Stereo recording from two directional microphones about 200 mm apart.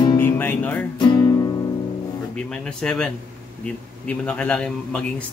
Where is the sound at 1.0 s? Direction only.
20° left (ahead or behind).